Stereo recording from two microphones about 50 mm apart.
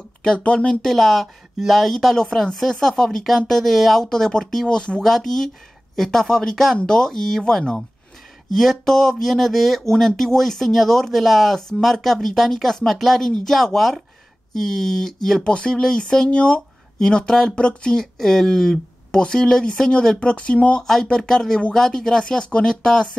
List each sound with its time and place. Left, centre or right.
0.2 s speech: centre
0.8 s speech: centre
5.0 s speech: centre; by 20.8 s left
20.8 s speech: centre